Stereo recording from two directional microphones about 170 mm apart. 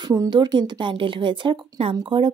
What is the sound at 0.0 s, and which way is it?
Speech, 25° right (ahead or behind).